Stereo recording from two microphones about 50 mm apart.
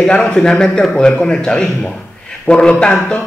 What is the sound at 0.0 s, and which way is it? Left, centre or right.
A man's voice, centre.